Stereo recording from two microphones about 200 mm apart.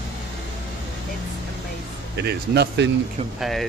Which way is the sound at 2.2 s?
55° right (ahead or behind).